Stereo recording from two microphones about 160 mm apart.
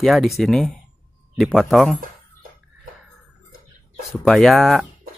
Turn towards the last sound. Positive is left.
turn(degrees=0)  # may be behind; listen again after turning